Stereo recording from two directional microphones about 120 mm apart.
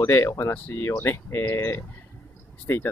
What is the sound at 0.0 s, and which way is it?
Speech, 25° left (ahead or behind).